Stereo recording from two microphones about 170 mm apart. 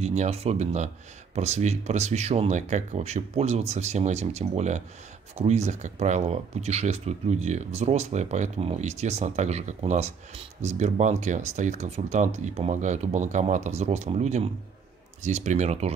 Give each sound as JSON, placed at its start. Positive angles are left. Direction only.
{"t": 0.0, "sound": "speech", "side_deg": -40}